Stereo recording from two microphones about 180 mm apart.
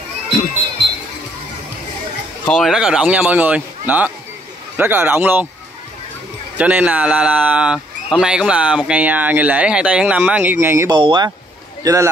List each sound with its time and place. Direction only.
2.4 s speech: centre (ahead or behind)
6.6 s speech: 10° right (ahead or behind)
11.0 s speech: 25° right (ahead or behind)